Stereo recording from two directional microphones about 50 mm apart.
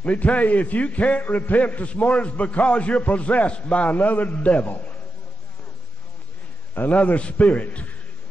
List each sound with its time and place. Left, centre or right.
0.0 s a man's voice: left
6.9 s a man's voice: left